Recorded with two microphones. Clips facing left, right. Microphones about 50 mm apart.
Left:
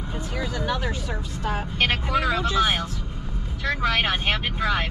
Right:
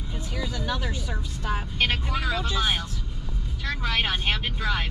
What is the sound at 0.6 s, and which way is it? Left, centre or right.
Speech, left.